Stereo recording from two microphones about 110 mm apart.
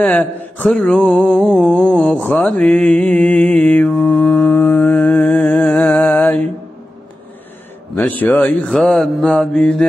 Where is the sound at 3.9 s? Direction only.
5° left (ahead or behind).